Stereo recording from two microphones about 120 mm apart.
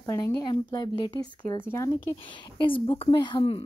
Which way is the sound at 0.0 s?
25° left (ahead or behind).